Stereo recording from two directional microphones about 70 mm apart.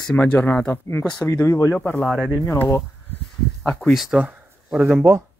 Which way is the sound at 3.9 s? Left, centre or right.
Centre.